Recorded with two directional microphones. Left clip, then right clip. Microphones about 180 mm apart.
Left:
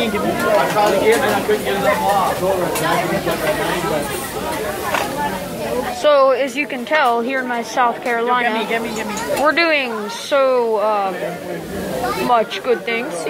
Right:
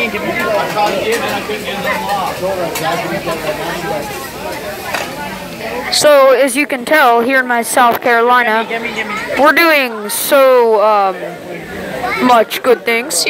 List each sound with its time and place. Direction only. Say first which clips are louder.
6.0 s a woman's voice: right 6 dB; 45° right (ahead or behind)
12.4 s a woman's voice: right 6 dB; 50° right (ahead or behind)